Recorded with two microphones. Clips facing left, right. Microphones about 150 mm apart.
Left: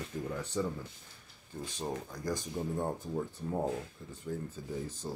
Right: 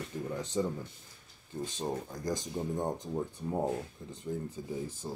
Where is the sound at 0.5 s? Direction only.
20° right (ahead or behind).